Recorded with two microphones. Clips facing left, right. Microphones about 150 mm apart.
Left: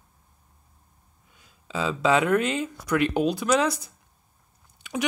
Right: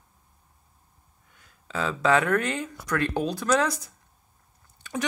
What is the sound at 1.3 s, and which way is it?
Speech, 15° left (ahead or behind).